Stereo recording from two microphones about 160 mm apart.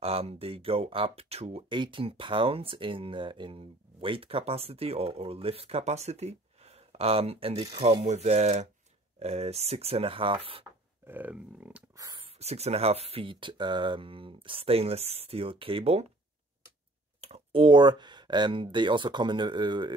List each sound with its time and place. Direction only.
0.0 s speech: 40° right (ahead or behind)
11.1 s a sound: 10° right (ahead or behind)
12.2 s speech: 40° right (ahead or behind)
17.2 s speech: 40° right (ahead or behind)